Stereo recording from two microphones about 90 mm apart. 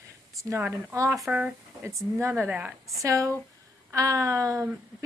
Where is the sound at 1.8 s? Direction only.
30° right (ahead or behind).